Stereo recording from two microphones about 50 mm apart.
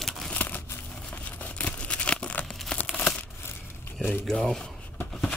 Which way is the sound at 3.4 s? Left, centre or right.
Left.